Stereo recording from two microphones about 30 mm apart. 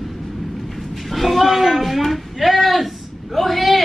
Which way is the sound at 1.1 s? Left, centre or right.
Centre.